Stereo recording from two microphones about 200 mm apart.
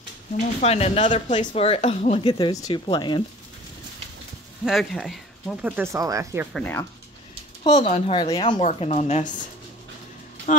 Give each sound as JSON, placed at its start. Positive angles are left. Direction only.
{"t": 0.4, "sound": "a woman's voice", "side_deg": 35}
{"t": 4.6, "sound": "speech", "side_deg": 0}
{"t": 6.5, "sound": "speech", "side_deg": 10}
{"t": 7.6, "sound": "a woman's voice", "side_deg": 35}